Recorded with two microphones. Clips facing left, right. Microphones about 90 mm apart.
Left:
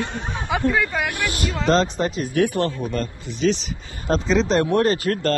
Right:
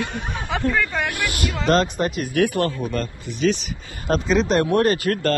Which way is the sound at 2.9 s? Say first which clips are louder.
Even; 50° right (ahead or behind).